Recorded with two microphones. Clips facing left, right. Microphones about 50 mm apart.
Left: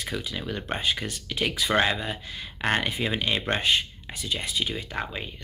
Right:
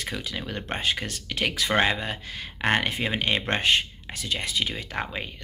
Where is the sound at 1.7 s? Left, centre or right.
Right.